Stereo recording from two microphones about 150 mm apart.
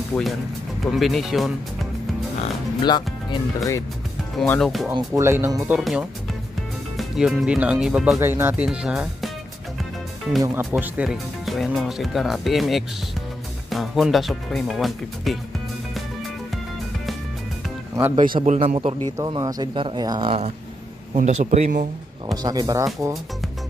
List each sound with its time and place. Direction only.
0.1 s speech: 5° left (ahead or behind)
3.3 s speech: 25° left (ahead or behind)
4.4 s speech: 5° left (ahead or behind)
4.9 s speech: 20° right (ahead or behind)
5.8 s speech: centre (ahead or behind)
8.2 s speech: 15° right (ahead or behind)
10.4 s speech: 15° right (ahead or behind); by 15.3 s centre (ahead or behind)
18.2 s a man's voice: 60° right (ahead or behind)
18.6 s a man's voice: 40° right (ahead or behind)
19.1 s speech: 25° right (ahead or behind)
21.1 s a man's voice: 55° right (ahead or behind)
22.3 s speech: 25° right (ahead or behind)